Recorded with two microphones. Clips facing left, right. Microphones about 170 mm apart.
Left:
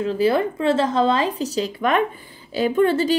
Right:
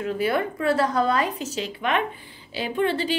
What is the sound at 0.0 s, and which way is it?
A woman's voice, 30° left (ahead or behind).